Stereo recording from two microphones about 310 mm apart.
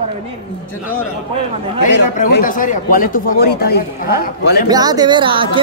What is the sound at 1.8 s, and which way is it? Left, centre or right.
A man's voice, left.